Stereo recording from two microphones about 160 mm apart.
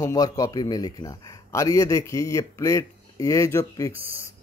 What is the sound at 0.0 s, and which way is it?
Speech, 20° left (ahead or behind).